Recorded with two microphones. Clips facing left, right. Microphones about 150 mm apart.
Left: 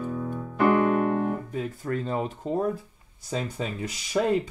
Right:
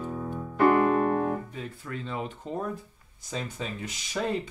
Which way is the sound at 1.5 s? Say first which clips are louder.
Left 8 dB; 45° left (ahead or behind).